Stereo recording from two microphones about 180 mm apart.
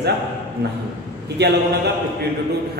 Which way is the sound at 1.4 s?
65° right (ahead or behind).